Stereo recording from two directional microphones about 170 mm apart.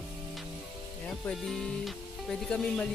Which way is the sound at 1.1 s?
Centre (ahead or behind).